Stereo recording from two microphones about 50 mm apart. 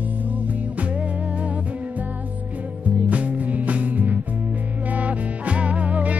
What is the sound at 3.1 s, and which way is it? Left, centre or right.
Music, right.